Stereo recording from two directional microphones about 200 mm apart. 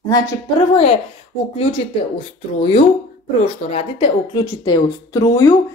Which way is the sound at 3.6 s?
30° left (ahead or behind).